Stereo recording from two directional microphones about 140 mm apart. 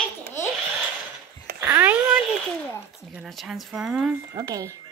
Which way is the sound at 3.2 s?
Centre (ahead or behind).